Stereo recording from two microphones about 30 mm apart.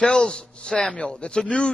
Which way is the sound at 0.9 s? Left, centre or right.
Left.